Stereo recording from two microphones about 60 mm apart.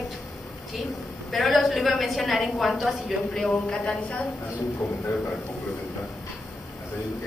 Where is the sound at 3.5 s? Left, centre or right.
Centre.